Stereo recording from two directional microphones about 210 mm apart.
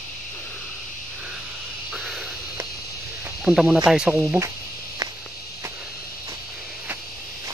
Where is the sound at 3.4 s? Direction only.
5° right (ahead or behind).